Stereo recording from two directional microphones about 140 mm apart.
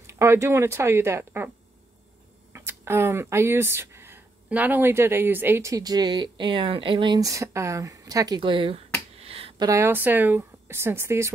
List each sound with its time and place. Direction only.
0.0 s speech: 20° right (ahead or behind)
2.5 s speech: 20° right (ahead or behind); by 8.8 s 40° right (ahead or behind)
9.2 s a sound: 45° right (ahead or behind)
9.7 s speech: 20° right (ahead or behind)